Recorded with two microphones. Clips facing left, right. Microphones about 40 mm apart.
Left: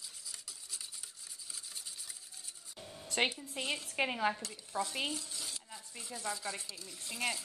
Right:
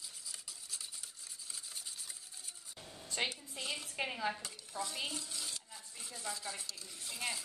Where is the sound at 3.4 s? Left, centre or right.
Left.